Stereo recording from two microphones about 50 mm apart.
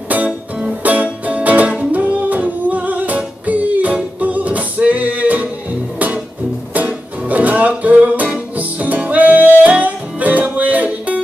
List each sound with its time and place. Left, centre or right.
0.8 s music: right
6.7 s music: right